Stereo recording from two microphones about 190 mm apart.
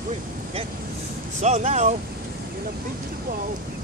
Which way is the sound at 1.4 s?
35° right (ahead or behind).